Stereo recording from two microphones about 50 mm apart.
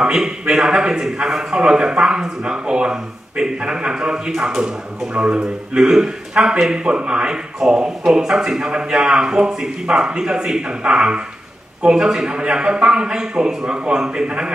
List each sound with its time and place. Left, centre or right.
0.0 s a man's voice: centre
4.3 s a man's voice: centre
5.1 s a man's voice: centre